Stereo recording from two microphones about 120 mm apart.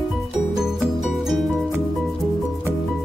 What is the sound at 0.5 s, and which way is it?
Music, 5° right (ahead or behind).